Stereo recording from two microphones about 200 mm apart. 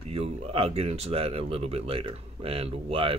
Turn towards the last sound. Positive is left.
turn(degrees=-30)  # may be behind; listen again after turning